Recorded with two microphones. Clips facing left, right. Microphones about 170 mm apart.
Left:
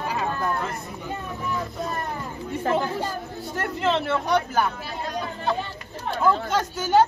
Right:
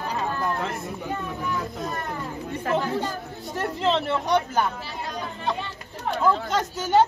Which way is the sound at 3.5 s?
Centre (ahead or behind).